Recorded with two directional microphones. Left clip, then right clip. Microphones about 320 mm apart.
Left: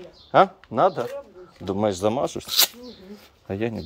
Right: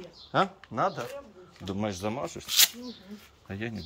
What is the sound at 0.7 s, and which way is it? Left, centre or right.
Speech, left.